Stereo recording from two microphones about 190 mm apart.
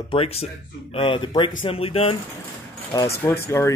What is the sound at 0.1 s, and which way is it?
Speech, 30° left (ahead or behind).